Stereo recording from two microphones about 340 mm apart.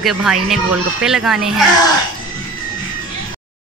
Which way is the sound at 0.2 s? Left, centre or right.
Centre.